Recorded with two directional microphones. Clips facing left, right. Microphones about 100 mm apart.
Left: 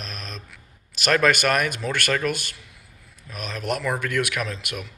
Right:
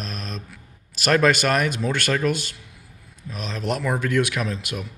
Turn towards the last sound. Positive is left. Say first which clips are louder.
# right 2 dB
turn(degrees=-25)  # may be behind; listen again after turning